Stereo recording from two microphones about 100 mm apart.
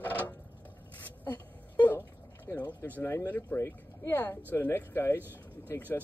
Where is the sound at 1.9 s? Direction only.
20° left (ahead or behind).